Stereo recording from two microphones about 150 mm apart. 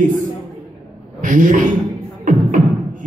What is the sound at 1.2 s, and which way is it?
Speech, 60° right (ahead or behind).